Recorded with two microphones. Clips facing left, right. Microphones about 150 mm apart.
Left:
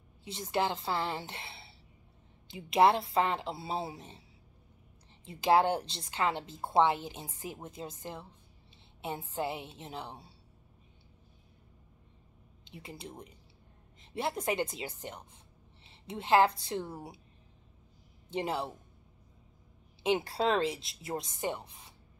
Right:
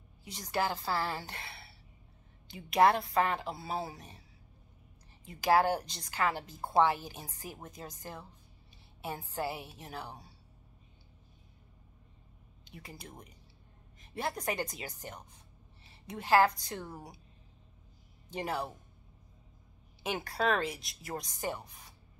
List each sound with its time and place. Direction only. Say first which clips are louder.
0.2 s a woman's voice: left 2 dB; 25° left (ahead or behind)
5.2 s speech: left 1 dB; 25° left (ahead or behind)
12.6 s speech: left 4 dB; 25° left (ahead or behind)
18.3 s speech: left 2 dB; 25° left (ahead or behind)
20.0 s speech: left 4 dB; 25° left (ahead or behind)